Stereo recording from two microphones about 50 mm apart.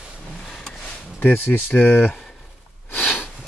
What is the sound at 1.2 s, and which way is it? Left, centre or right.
Speech, left.